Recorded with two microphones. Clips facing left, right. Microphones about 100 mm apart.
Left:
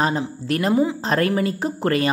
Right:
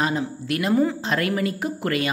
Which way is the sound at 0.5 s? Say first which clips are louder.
Left 2 dB; 35° left (ahead or behind).